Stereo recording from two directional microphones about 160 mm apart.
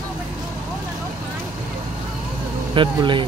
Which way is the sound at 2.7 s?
30° right (ahead or behind).